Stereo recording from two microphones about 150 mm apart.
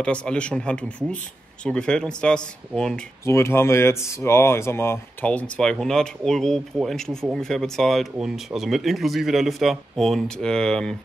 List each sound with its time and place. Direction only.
0.0 s speech: 5° left (ahead or behind)
3.3 s speech: 15° left (ahead or behind)